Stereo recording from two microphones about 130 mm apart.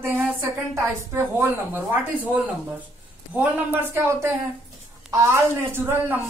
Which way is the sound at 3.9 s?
20° right (ahead or behind).